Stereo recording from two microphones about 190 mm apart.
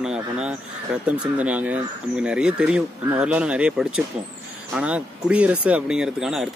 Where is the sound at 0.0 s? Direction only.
5° right (ahead or behind).